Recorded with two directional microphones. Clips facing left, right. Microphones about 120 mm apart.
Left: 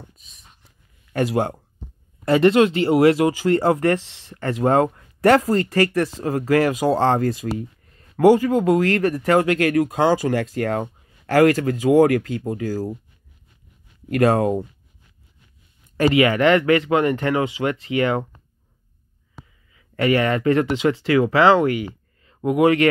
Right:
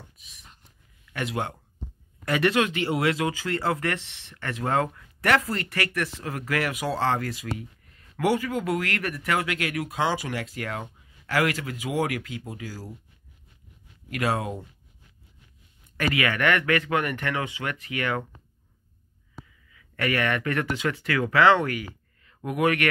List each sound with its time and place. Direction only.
1.1 s speech: 35° left (ahead or behind)
14.0 s speech: 45° left (ahead or behind)
16.0 s speech: 30° left (ahead or behind)
19.7 s speech: 25° left (ahead or behind)